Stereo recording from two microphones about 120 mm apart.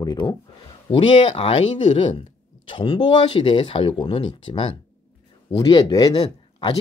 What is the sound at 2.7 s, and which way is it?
Speech, 45° left (ahead or behind).